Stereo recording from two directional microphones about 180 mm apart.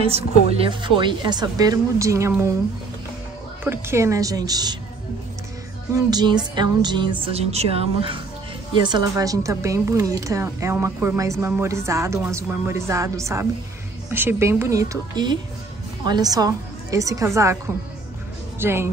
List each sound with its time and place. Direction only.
0.0 s a woman's voice: 30° right (ahead or behind); by 2.5 s 15° right (ahead or behind)
3.6 s a woman's voice: 15° right (ahead or behind)
5.9 s a woman's voice: 20° right (ahead or behind)
18.6 s speech: 15° right (ahead or behind)